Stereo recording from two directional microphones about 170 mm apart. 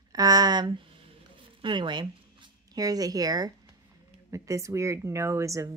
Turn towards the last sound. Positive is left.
turn(degrees=-15)  # may be behind; listen again after turning